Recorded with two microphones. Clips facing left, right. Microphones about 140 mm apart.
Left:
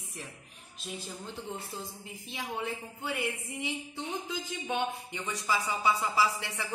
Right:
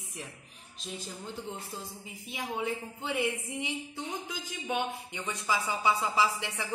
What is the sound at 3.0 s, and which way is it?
Speech, 15° right (ahead or behind).